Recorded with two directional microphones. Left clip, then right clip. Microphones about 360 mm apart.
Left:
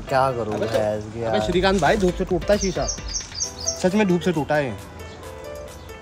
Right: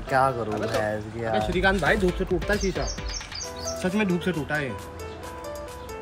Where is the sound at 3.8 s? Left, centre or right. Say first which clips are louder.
Left 6 dB; left.